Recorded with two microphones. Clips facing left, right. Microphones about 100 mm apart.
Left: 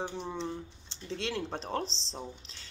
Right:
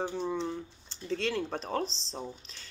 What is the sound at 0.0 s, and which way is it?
Speech, 20° left (ahead or behind).